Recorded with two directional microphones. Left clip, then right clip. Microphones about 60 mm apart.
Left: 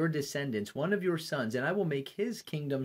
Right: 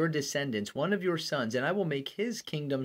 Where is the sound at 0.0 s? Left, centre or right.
Right.